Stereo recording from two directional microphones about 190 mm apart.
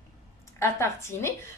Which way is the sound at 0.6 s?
15° left (ahead or behind).